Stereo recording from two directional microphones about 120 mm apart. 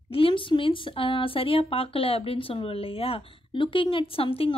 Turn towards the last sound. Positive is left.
turn(degrees=50)  # may be behind; listen again after turning